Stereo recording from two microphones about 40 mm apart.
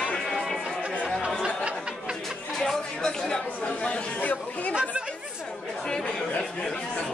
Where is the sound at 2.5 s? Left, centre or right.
Centre.